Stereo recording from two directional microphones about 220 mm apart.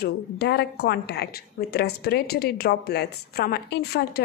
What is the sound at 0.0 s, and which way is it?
A woman's voice, 50° left (ahead or behind).